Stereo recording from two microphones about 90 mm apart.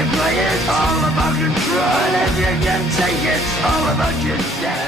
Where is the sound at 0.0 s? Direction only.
Centre (ahead or behind).